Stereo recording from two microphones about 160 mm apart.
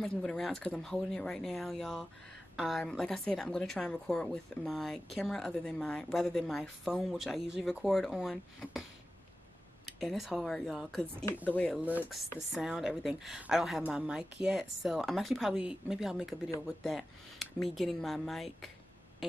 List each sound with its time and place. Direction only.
0.0 s a woman's voice: 5° left (ahead or behind)
9.9 s a woman's voice: centre (ahead or behind)
11.8 s chopping: 10° right (ahead or behind)
12.5 s a woman's voice: 5° right (ahead or behind)
16.4 s speech: 20° left (ahead or behind)
16.8 s a woman's voice: centre (ahead or behind)